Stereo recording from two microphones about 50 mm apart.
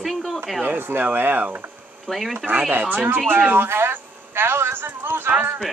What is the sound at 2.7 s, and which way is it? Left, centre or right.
Speech, right.